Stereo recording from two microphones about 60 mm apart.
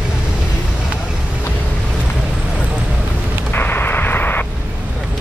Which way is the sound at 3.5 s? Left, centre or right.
Left.